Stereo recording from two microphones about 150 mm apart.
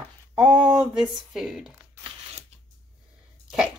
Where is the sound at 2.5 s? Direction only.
45° right (ahead or behind).